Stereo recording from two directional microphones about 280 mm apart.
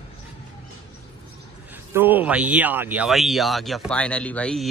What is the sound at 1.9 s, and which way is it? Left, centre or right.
Speech, centre.